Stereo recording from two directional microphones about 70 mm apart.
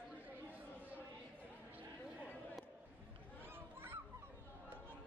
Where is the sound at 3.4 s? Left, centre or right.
Right.